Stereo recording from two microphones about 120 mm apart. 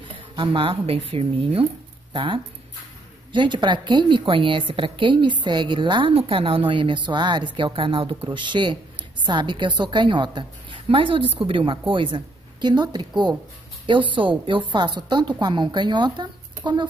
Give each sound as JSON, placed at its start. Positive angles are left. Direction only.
{"t": 0.4, "sound": "a woman's voice", "side_deg": -45}